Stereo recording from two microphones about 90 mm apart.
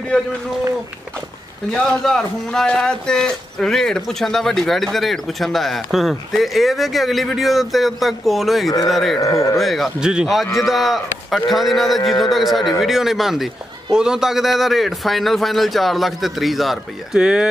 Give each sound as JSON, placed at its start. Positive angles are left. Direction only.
{"t": 0.1, "sound": "speech", "side_deg": 10}
{"t": 1.7, "sound": "speech", "side_deg": 5}
{"t": 9.2, "sound": "speech", "side_deg": 40}
{"t": 9.6, "sound": "speech", "side_deg": 0}